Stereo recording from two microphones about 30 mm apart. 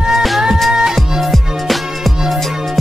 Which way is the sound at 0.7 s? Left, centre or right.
Centre.